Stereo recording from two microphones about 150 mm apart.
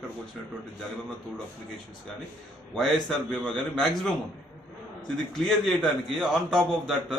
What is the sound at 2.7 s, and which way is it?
A man's voice, centre (ahead or behind).